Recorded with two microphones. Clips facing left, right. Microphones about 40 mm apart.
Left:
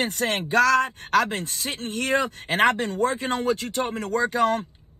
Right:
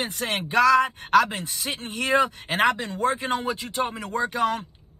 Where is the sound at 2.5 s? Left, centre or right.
Left.